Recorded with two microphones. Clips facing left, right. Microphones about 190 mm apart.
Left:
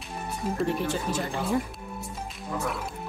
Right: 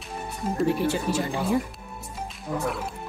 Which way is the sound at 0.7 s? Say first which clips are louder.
Right 4 dB; 10° right (ahead or behind).